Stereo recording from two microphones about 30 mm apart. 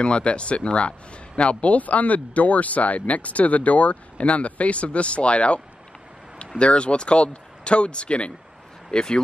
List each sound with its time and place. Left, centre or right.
0.0 s speech: left
6.6 s speech: left